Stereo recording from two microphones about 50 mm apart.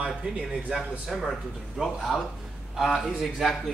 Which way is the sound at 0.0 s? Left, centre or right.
Centre.